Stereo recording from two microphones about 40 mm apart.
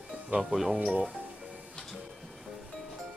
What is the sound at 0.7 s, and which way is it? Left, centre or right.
Speech, centre.